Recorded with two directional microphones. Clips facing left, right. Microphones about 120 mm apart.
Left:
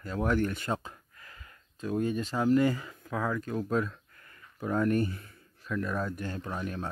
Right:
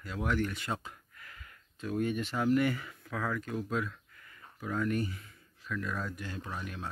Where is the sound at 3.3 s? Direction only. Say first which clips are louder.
Left 4 dB; 40° left (ahead or behind).